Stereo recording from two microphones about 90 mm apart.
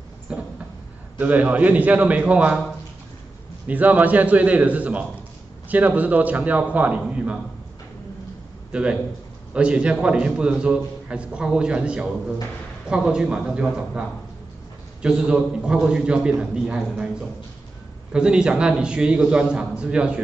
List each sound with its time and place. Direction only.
0.3 s a sound: 10° right (ahead or behind)
1.1 s a man's voice: 15° right (ahead or behind)
3.6 s a man's voice: 15° right (ahead or behind)
9.5 s a man's voice: 10° right (ahead or behind)